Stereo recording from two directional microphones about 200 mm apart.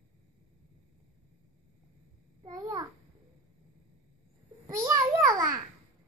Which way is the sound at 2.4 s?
20° right (ahead or behind).